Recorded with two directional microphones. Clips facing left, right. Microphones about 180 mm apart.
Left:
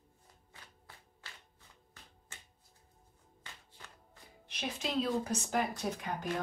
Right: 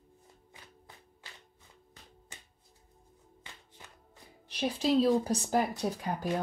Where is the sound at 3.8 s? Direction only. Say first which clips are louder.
Right 1 dB; 20° right (ahead or behind).